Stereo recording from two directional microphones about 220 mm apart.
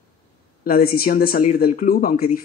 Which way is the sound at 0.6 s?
45° left (ahead or behind).